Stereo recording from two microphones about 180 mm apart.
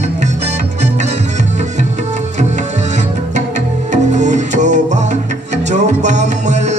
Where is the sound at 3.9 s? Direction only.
40° right (ahead or behind).